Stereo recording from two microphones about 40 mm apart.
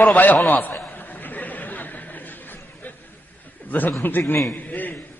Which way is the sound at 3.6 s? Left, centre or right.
Left.